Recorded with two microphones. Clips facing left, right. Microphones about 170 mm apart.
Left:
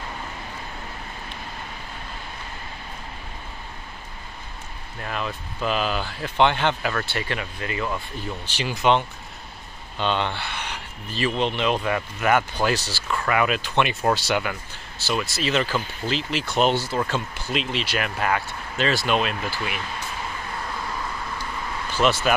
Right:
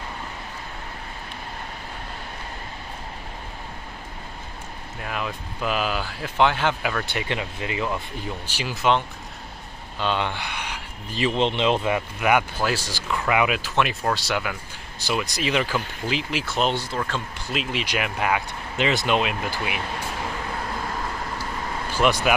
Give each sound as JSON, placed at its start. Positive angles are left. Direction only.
{"t": 5.0, "sound": "speech", "side_deg": -10}
{"t": 7.1, "sound": "speech", "side_deg": -20}
{"t": 8.5, "sound": "speech", "side_deg": -5}
{"t": 15.0, "sound": "speech", "side_deg": -15}
{"t": 16.5, "sound": "speech", "side_deg": 5}
{"t": 21.9, "sound": "speech", "side_deg": -10}